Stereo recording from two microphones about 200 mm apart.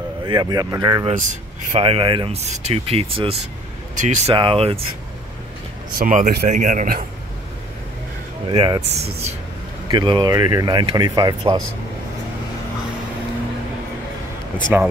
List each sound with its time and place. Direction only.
0.2 s speech: 20° right (ahead or behind)
1.0 s speech: 40° right (ahead or behind)
3.9 s speech: 40° right (ahead or behind)
4.4 s speech: 25° right (ahead or behind)
5.9 s speech: 45° right (ahead or behind)
8.5 s speech: 25° right (ahead or behind)
14.7 s speech: 5° right (ahead or behind)